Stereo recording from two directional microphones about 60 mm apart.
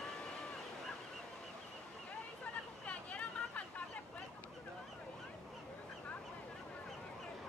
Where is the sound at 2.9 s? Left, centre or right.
Left.